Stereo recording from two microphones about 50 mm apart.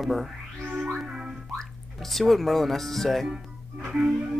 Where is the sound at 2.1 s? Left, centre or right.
Centre.